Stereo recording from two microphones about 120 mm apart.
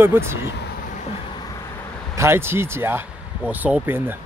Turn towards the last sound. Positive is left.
turn(degrees=-15)  # may be behind; listen again after turning